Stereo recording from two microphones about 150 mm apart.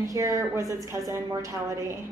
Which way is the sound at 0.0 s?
20° right (ahead or behind).